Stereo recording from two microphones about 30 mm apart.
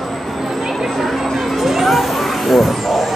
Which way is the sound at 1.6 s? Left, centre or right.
Centre.